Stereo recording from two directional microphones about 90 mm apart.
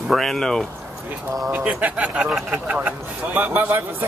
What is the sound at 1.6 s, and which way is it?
Speech, 15° right (ahead or behind).